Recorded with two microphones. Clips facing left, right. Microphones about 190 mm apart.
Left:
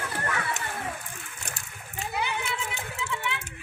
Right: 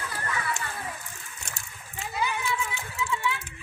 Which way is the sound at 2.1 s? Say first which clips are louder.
Right 2 dB; 65° left (ahead or behind).